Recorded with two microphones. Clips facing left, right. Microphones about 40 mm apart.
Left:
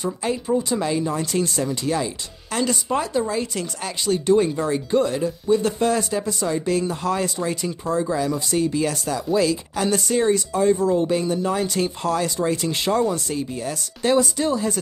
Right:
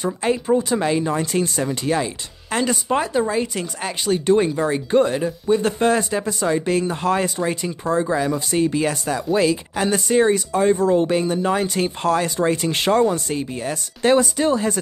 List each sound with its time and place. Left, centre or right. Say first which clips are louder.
0.0 s speech: right 3 dB; right
11.1 s speech: right 2 dB; right
12.7 s speech: right 5 dB; right
13.1 s speech: right 2 dB; right